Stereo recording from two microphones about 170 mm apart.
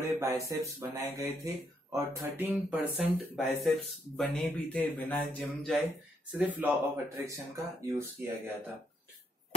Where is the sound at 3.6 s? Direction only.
Centre (ahead or behind).